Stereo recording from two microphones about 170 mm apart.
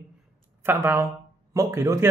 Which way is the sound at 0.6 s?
15° right (ahead or behind).